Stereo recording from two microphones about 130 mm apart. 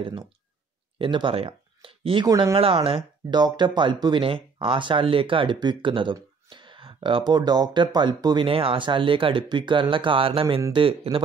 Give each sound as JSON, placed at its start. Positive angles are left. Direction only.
{"t": 0.9, "sound": "speech", "side_deg": -45}
{"t": 2.2, "sound": "speech", "side_deg": -30}
{"t": 2.5, "sound": "speech", "side_deg": -45}
{"t": 3.3, "sound": "speech", "side_deg": -35}
{"t": 6.5, "sound": "a sound", "side_deg": -40}
{"t": 7.3, "sound": "speech", "side_deg": -30}
{"t": 8.5, "sound": "speech", "side_deg": -45}